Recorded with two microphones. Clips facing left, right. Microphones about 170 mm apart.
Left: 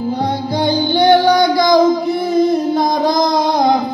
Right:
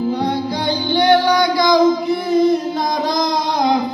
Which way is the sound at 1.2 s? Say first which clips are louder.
Left 3 dB; 50° left (ahead or behind).